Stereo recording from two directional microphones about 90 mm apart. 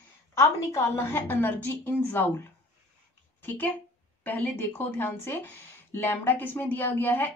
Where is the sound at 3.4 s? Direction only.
20° left (ahead or behind).